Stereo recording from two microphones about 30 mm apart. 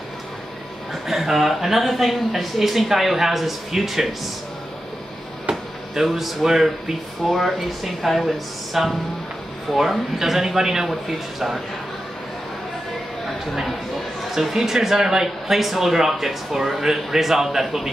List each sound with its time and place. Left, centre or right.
1.0 s speech: centre
5.5 s a sound: right
6.0 s speech: centre
7.2 s speech: centre
10.9 s speech: centre
14.6 s speech: centre